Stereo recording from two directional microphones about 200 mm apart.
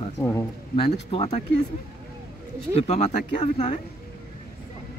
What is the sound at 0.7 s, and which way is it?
Speech, 25° left (ahead or behind).